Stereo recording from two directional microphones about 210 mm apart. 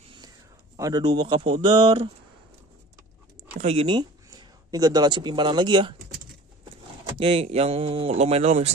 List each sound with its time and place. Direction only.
0.7 s speech: 15° right (ahead or behind)
3.5 s speech: 30° right (ahead or behind)
7.2 s speech: 25° right (ahead or behind)